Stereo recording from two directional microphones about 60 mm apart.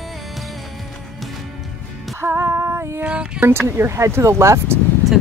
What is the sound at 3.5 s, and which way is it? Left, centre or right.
Speech, right.